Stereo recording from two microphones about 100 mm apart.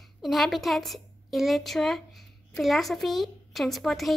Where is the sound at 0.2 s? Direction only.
Centre (ahead or behind).